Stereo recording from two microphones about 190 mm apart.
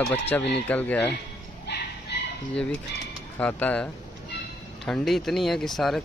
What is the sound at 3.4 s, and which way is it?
Speech, 5° left (ahead or behind).